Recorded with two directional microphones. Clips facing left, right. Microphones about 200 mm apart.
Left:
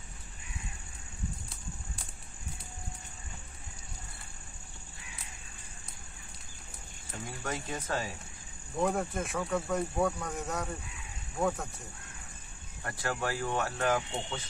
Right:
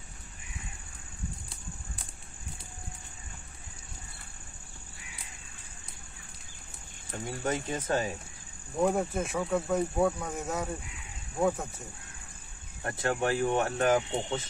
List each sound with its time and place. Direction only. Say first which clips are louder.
7.4 s speech: right 5 dB; 20° right (ahead or behind)
8.7 s speech: right 3 dB; 5° right (ahead or behind)
11.3 s speech: right 3 dB; 15° right (ahead or behind)
12.8 s speech: right 5 dB; 25° right (ahead or behind)